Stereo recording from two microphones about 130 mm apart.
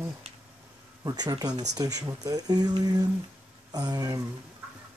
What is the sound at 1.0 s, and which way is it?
Speech, 30° right (ahead or behind).